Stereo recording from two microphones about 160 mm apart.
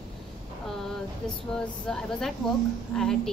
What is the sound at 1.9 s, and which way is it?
A woman's voice, 5° left (ahead or behind).